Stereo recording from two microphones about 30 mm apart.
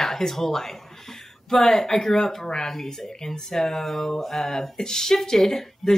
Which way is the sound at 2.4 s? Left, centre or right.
Left.